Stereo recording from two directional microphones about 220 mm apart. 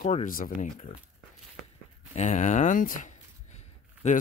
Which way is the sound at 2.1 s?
30° left (ahead or behind).